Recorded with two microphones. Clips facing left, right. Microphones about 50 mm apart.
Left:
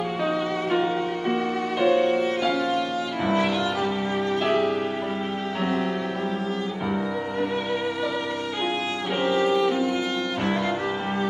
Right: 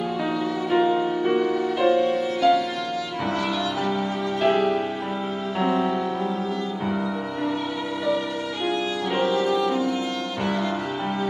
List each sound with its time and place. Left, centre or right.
0.7 s music: centre
1.9 s music: left
3.3 s music: left
4.4 s music: centre
9.1 s violin: centre